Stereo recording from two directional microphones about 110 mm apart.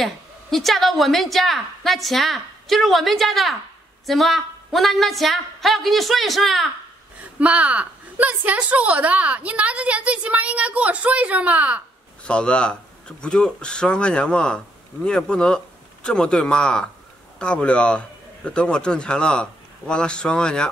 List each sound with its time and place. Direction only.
0.0 s a woman's voice: centre (ahead or behind)
7.3 s a woman's voice: 10° right (ahead or behind)
12.3 s a man's voice: 10° left (ahead or behind)